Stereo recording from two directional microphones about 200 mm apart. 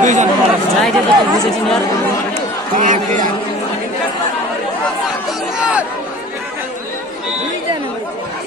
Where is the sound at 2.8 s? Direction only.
40° right (ahead or behind).